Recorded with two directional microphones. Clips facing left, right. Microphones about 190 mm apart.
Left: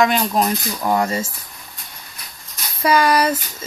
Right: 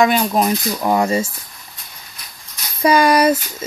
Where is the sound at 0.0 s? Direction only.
15° right (ahead or behind).